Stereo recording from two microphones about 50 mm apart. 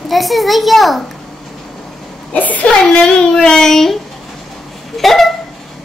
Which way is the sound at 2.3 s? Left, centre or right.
Left.